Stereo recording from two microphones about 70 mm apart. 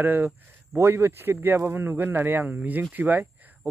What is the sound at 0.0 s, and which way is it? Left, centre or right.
A man's voice, right.